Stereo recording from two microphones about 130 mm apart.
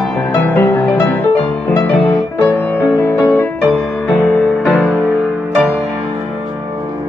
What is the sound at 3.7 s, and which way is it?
Music, 5° left (ahead or behind).